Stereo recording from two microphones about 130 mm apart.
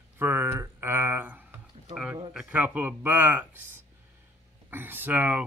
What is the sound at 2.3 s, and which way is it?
A man's voice, 10° right (ahead or behind).